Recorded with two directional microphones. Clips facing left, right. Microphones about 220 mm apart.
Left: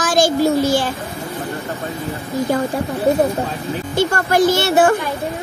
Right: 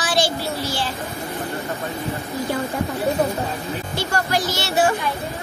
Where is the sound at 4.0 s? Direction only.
50° left (ahead or behind).